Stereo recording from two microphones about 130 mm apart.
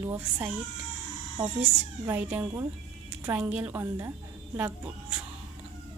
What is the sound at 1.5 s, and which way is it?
A woman's voice, 15° right (ahead or behind).